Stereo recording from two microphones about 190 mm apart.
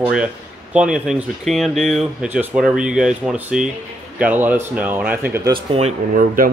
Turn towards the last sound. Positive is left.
turn(degrees=-45)  # may be behind; listen again after turning